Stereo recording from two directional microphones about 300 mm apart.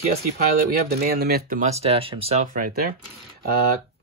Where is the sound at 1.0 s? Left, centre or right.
Right.